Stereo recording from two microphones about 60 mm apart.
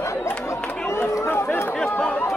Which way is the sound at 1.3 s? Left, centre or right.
Left.